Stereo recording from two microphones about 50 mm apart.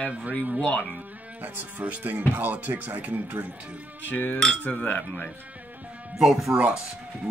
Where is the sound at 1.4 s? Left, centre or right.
Right.